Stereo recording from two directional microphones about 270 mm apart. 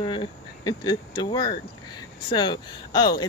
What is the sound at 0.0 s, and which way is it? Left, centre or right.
Speech, centre.